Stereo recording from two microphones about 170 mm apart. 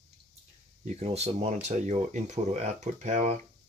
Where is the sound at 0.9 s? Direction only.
40° right (ahead or behind).